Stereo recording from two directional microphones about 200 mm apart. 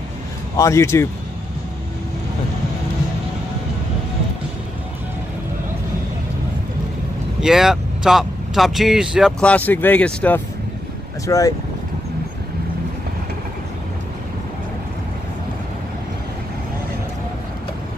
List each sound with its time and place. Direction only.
0.6 s speech: 15° left (ahead or behind)
7.3 s speech: centre (ahead or behind); by 11.5 s 15° left (ahead or behind)